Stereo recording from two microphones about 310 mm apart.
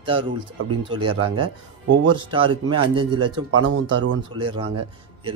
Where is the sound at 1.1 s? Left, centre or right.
Right.